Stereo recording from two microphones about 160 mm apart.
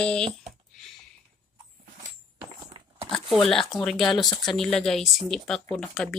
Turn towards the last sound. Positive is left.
turn(degrees=5)  # may be behind; listen again after turning